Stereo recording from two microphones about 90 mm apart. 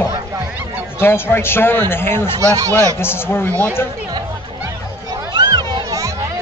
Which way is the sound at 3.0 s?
25° left (ahead or behind).